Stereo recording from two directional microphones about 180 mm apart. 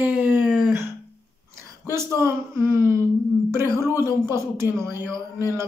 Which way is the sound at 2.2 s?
15° right (ahead or behind).